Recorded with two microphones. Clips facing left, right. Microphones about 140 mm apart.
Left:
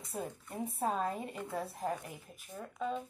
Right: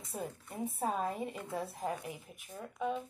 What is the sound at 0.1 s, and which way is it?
Speech, centre (ahead or behind).